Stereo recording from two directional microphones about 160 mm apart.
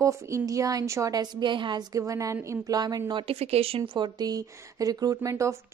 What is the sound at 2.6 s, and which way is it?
Speech, 25° right (ahead or behind).